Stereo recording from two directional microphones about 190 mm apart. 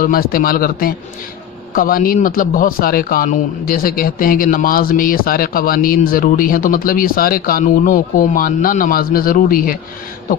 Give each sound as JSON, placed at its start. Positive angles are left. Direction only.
{"t": 0.0, "sound": "a man's voice", "side_deg": 50}